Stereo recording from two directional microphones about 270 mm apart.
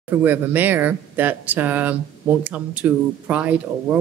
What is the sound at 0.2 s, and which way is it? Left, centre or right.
Speech, centre.